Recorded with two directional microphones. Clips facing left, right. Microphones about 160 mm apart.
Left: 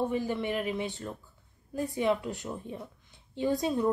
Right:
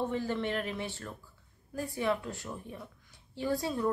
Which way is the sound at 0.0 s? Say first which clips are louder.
Left 2 dB; 10° left (ahead or behind).